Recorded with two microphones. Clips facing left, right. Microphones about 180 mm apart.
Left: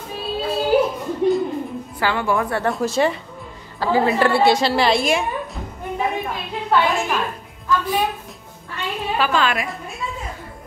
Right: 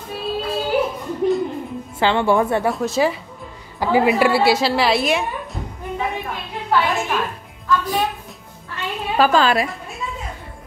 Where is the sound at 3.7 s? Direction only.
15° right (ahead or behind).